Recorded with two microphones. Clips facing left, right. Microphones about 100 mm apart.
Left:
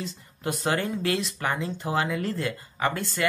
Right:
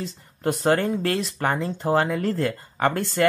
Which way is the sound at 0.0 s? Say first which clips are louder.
Right 6 dB; 45° right (ahead or behind).